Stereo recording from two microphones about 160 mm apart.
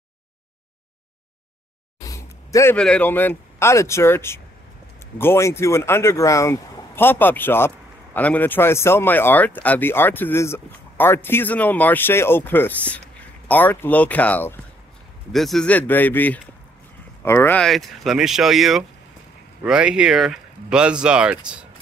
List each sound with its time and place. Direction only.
2.0 s a sound: 20° left (ahead or behind)
2.8 s speech: 10° left (ahead or behind)
17.6 s speech: centre (ahead or behind)